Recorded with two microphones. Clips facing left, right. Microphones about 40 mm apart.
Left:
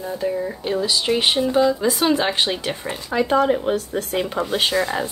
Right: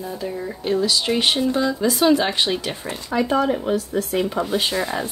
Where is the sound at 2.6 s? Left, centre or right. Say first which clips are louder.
Left 2 dB; left.